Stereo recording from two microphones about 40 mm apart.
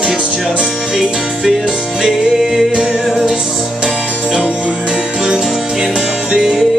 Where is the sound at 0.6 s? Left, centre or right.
Right.